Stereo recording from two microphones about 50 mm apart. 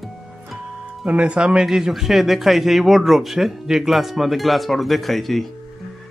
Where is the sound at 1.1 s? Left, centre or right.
Right.